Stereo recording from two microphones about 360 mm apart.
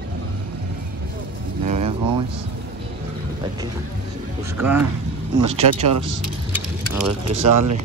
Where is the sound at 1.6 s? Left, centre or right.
Centre.